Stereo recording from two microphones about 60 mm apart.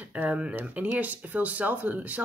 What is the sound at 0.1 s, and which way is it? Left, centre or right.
Speech, right.